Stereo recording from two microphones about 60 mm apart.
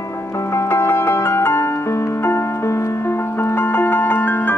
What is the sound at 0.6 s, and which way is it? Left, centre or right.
Music, left.